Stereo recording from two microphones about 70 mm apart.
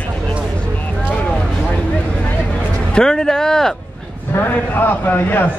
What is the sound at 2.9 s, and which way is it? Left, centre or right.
Speech, centre.